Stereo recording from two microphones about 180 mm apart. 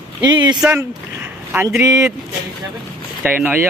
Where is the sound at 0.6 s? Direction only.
10° right (ahead or behind).